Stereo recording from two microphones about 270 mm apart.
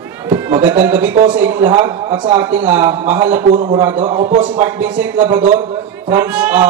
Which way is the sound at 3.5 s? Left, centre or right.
Right.